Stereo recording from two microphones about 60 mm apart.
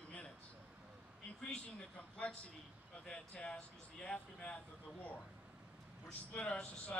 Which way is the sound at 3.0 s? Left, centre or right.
Centre.